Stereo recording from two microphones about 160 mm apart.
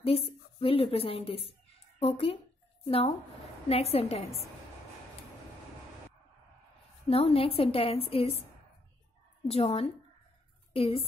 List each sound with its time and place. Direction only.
0.0 s a woman's voice: 35° left (ahead or behind)
3.6 s a woman's voice: 40° left (ahead or behind)
7.1 s a woman's voice: 40° left (ahead or behind)
9.5 s a woman's voice: 35° left (ahead or behind)